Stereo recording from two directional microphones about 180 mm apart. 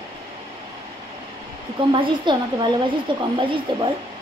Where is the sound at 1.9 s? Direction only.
25° right (ahead or behind).